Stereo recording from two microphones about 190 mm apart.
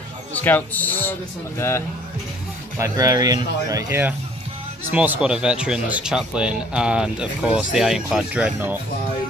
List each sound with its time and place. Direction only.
0.3 s speech: 10° left (ahead or behind)
2.8 s speech: 20° right (ahead or behind)